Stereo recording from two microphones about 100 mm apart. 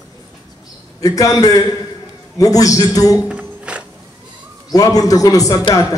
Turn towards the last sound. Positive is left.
turn(degrees=35)  # may be behind; listen again after turning